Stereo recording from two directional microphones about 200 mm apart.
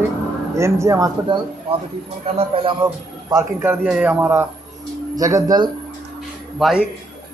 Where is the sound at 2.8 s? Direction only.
5° right (ahead or behind).